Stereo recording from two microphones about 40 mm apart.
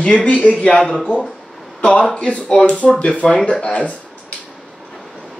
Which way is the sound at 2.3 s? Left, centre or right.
Left.